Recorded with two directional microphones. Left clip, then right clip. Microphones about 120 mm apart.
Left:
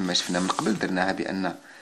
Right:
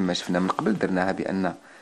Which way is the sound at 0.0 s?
45° right (ahead or behind).